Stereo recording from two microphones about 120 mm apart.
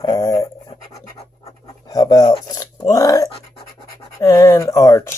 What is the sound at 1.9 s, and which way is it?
Speech, 35° left (ahead or behind).